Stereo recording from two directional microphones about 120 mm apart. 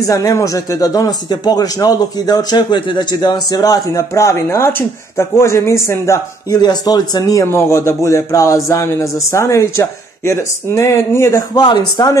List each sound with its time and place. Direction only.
0.0 s speech: 30° left (ahead or behind)
11.5 s a man's voice: 35° left (ahead or behind)